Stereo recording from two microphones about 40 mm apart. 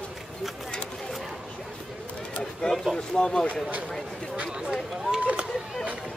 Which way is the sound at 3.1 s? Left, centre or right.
Left.